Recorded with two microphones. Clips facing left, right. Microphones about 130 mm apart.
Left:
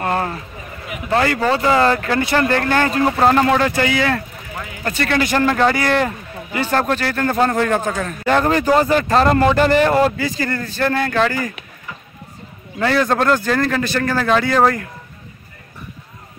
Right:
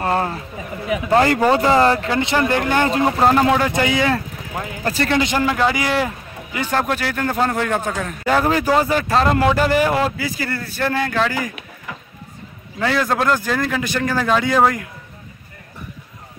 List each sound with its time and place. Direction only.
0.0 s speech: 25° right (ahead or behind)
1.6 s speech: 25° right (ahead or behind)
3.1 s speech: 5° right (ahead or behind)
3.7 s speech: 20° right (ahead or behind)
4.6 s speech: 35° right (ahead or behind)
5.1 s speech: 20° right (ahead or behind)
5.4 s a man's voice: 10° right (ahead or behind)
12.7 s a man's voice: 5° right (ahead or behind)